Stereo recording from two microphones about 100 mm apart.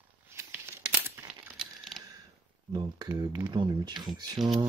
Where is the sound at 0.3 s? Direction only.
25° right (ahead or behind).